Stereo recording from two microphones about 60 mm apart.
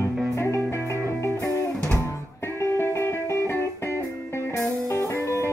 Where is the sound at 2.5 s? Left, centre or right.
Left.